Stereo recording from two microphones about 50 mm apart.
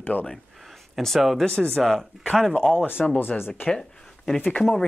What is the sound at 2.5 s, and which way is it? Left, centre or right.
Speech, centre.